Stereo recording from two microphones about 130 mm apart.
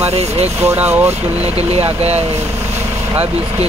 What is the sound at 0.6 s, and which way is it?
Speech, 15° right (ahead or behind).